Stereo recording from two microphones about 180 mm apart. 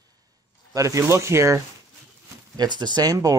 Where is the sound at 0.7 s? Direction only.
20° right (ahead or behind).